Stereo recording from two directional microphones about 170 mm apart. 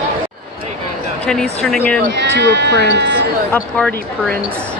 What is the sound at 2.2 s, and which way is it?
Speech, 90° right.